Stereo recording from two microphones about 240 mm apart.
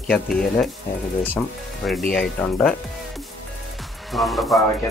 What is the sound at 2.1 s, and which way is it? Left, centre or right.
Speech, centre.